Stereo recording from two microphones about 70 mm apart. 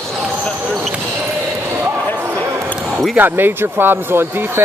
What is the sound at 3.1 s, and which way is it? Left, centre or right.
Speech, right.